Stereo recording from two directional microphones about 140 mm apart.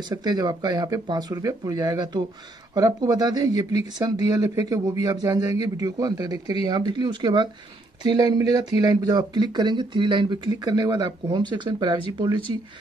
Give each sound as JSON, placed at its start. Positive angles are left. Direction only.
{"t": 0.1, "sound": "speech", "side_deg": -30}